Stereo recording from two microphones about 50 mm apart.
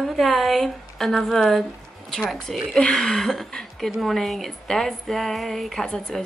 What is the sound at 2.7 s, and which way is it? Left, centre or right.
Speech, centre.